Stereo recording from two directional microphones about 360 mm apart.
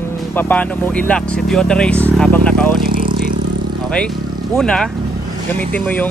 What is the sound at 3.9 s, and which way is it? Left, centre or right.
Speech, centre.